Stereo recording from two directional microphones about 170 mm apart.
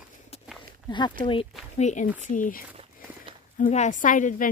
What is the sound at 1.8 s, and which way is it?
Speech, 45° left (ahead or behind).